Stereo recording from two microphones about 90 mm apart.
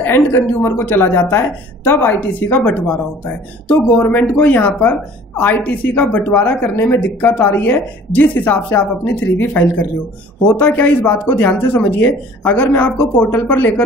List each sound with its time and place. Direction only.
0.0 s a woman's voice: 20° left (ahead or behind)